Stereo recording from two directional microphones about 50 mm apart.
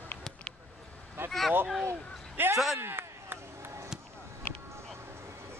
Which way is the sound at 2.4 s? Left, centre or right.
Right.